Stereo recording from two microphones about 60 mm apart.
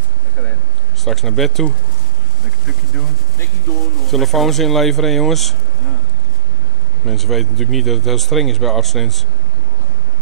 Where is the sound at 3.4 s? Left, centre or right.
Left.